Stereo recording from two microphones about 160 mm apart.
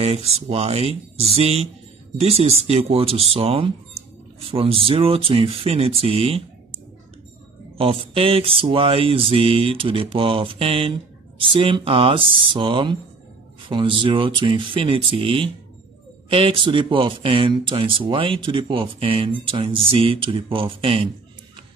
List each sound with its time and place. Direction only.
0.0 s mantra: 40° right (ahead or behind)
7.7 s mantra: 35° right (ahead or behind)